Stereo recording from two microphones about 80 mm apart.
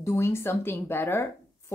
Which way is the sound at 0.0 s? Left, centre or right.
Left.